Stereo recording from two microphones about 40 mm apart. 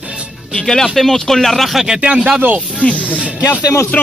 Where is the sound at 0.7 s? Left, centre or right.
Centre.